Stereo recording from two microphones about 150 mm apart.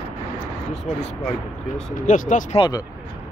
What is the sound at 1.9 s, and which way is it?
Speech, 60° left (ahead or behind).